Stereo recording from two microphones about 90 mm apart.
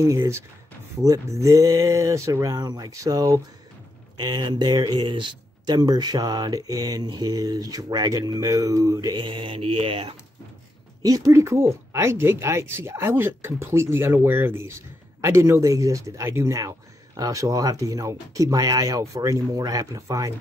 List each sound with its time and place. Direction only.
0.0 s speech: 35° right (ahead or behind)
2.4 s speech: 45° right (ahead or behind)
4.2 s speech: 60° right (ahead or behind)
9.2 s mantra: 70° right (ahead or behind); by 10.1 s 90° right
11.0 s speech: 40° right (ahead or behind)